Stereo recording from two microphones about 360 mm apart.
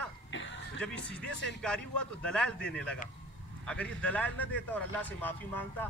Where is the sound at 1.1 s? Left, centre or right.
Centre.